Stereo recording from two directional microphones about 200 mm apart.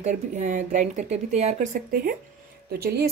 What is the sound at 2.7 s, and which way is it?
Speech, 55° right (ahead or behind).